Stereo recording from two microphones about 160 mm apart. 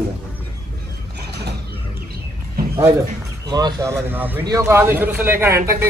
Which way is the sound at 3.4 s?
25° right (ahead or behind).